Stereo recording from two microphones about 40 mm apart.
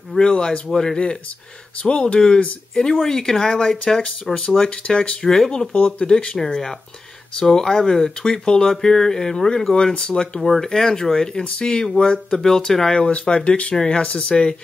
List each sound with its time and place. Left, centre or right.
0.2 s speech: left
1.8 s speech: left
5.7 s speech: left
7.3 s speech: centre
10.4 s speech: centre
12.9 s speech: left